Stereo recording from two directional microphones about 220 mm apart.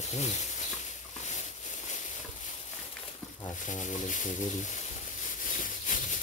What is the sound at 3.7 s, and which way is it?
Speech, 35° left (ahead or behind).